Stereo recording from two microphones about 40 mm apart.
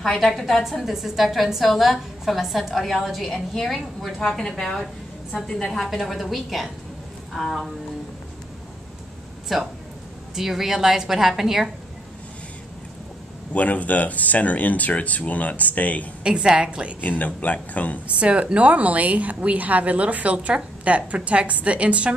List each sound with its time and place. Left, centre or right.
0.0 s a woman's voice: centre
4.2 s a woman's voice: centre
5.9 s a woman's voice: centre
9.5 s a woman's voice: centre
13.5 s speech: left
16.3 s a woman's voice: right
17.2 s speech: left
18.0 s a woman's voice: right